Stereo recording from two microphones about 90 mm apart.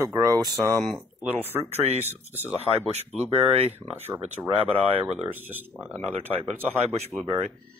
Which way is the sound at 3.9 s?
25° right (ahead or behind).